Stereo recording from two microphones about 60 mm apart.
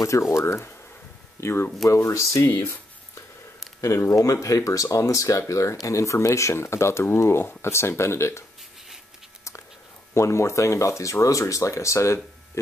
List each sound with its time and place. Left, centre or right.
0.3 s speech: left
1.9 s speech: left
2.4 s speech: left
3.8 s speech: left
10.1 s speech: left